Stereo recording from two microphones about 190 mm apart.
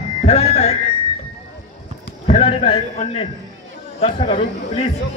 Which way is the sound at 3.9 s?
35° left (ahead or behind).